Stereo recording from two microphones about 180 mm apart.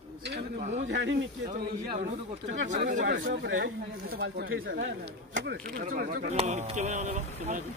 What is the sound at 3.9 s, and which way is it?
Speech, 65° right (ahead or behind).